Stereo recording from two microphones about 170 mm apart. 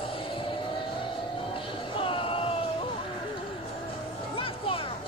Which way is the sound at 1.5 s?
30° left (ahead or behind).